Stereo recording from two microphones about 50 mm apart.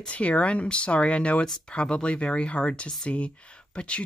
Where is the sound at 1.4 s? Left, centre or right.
Centre.